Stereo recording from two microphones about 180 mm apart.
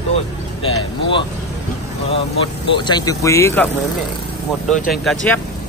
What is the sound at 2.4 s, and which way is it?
Speech, 25° left (ahead or behind).